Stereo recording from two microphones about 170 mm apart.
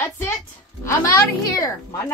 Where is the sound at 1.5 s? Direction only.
20° left (ahead or behind).